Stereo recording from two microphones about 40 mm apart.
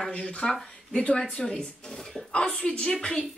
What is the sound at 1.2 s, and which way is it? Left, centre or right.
A woman's voice, centre.